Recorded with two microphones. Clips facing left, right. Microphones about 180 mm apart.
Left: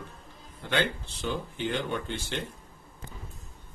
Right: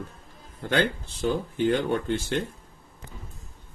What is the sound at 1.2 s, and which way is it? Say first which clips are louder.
Speech: right 7 dB; 45° right (ahead or behind).